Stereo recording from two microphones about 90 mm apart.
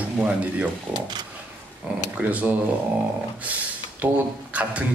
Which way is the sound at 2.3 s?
15° right (ahead or behind).